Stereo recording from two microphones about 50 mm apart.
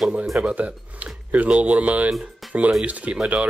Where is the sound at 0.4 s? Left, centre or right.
Right.